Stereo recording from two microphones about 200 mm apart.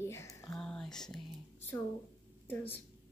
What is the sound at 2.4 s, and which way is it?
Speech, 10° left (ahead or behind).